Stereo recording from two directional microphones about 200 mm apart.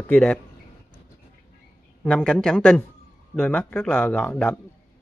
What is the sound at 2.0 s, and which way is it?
A man's voice, 5° left (ahead or behind).